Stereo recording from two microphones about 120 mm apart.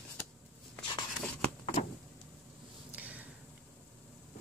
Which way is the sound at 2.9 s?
10° right (ahead or behind).